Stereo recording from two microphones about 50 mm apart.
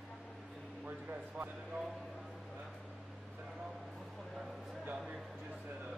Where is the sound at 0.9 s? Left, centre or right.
Right.